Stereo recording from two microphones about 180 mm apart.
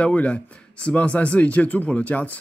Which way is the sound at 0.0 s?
5° left (ahead or behind).